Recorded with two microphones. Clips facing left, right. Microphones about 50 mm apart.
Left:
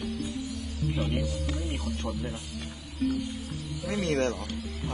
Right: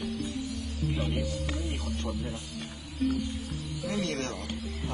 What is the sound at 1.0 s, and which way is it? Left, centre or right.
A man's voice, left.